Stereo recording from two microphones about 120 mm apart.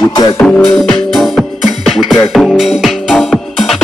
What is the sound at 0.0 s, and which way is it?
Music, 35° left (ahead or behind).